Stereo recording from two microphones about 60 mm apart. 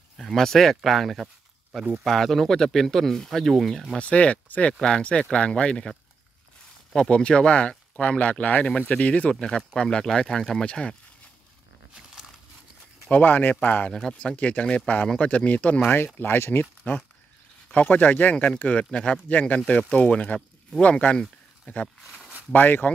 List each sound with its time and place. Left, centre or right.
0.2 s speech: centre
4.0 s speech: left
8.6 s speech: centre
9.0 s speech: left
9.3 s speech: centre
13.1 s speech: left
13.9 s speech: centre
14.3 s speech: left
21.8 s speech: centre
22.5 s speech: left